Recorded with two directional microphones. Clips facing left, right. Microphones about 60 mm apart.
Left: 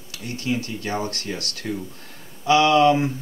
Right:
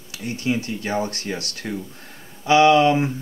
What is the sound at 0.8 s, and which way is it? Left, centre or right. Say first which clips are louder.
Speech: right 2 dB; right.